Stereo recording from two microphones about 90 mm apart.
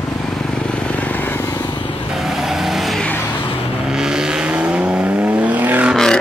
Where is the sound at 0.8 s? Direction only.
15° left (ahead or behind).